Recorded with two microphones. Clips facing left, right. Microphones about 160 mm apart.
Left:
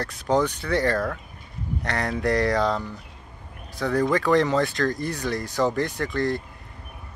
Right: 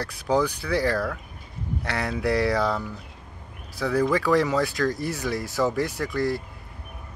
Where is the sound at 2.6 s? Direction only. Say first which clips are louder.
Left 1 dB; 20° left (ahead or behind).